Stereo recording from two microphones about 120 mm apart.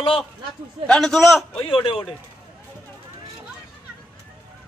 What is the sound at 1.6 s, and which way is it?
Speech, 45° left (ahead or behind).